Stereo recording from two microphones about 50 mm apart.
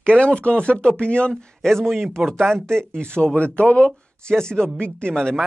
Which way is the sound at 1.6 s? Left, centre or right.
Centre.